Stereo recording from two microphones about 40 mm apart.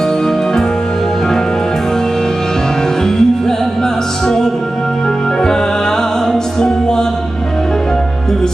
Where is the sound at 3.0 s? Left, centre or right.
Centre.